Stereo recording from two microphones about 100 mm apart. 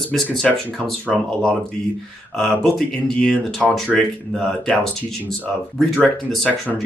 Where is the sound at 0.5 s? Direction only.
5° left (ahead or behind).